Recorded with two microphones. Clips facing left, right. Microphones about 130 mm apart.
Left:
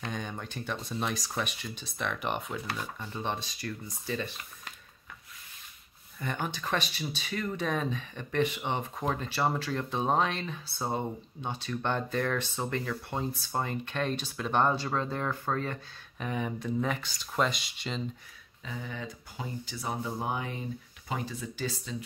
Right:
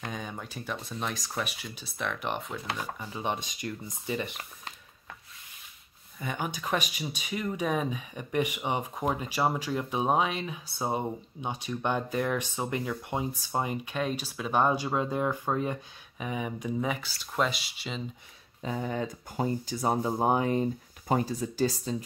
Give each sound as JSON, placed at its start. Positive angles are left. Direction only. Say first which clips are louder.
{"t": 0.0, "sound": "speech", "louder": "even", "side_deg": -5}
{"t": 6.1, "sound": "speech", "louder": "right 1 dB", "side_deg": -10}
{"t": 18.6, "sound": "speech", "louder": "right 8 dB", "side_deg": -45}